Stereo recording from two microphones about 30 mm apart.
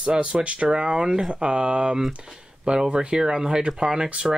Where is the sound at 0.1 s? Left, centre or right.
Right.